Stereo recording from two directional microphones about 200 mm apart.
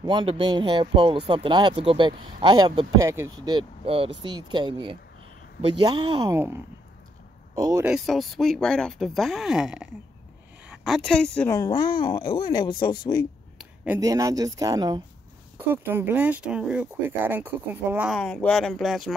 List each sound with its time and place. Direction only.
0.0 s a man's voice: 25° right (ahead or behind)
7.8 s speech: centre (ahead or behind); by 13.3 s 20° left (ahead or behind)
13.9 s speech: 15° right (ahead or behind)
18.1 s speech: 5° left (ahead or behind)